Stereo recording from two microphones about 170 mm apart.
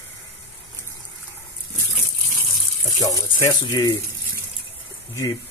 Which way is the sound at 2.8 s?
20° left (ahead or behind).